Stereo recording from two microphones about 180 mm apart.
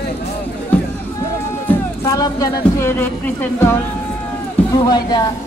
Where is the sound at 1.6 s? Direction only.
20° left (ahead or behind).